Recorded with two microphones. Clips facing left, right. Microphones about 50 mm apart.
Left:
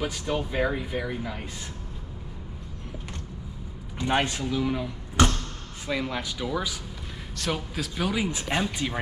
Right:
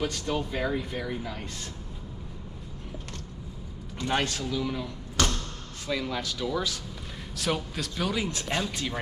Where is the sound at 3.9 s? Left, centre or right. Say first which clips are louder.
Left 3 dB; centre.